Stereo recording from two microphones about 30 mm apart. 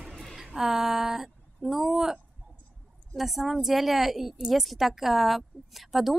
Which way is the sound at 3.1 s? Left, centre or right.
Centre.